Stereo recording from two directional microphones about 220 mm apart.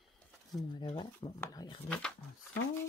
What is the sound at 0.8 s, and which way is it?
Speech, 20° left (ahead or behind).